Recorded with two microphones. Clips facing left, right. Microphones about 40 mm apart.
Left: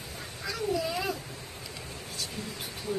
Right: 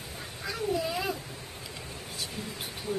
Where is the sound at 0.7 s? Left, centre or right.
Centre.